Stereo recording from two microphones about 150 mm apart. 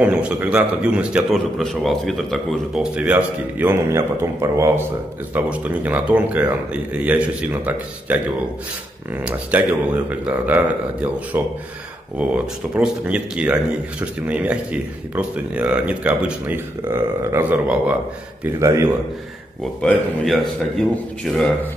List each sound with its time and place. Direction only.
0.0 s a man's voice: 5° right (ahead or behind)
18.4 s a man's voice: 20° right (ahead or behind)
19.8 s a man's voice: 5° left (ahead or behind)